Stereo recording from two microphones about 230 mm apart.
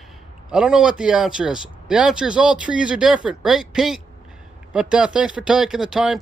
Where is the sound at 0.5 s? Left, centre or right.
Centre.